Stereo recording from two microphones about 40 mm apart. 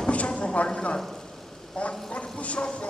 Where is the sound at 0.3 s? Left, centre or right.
Left.